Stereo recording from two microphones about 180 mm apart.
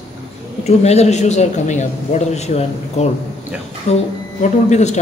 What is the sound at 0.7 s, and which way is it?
A man's voice, 35° left (ahead or behind).